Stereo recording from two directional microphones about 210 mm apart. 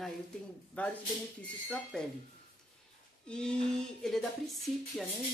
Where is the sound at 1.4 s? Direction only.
5° left (ahead or behind).